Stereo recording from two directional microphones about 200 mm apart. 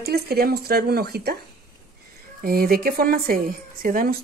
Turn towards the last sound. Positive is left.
turn(degrees=-45)  # may be behind; listen again after turning